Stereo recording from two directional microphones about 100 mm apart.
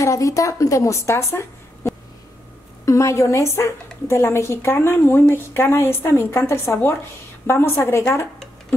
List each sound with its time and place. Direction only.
0.0 s a woman's voice: 30° left (ahead or behind)